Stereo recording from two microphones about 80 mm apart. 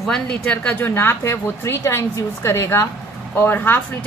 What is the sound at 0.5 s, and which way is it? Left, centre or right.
Speech, centre.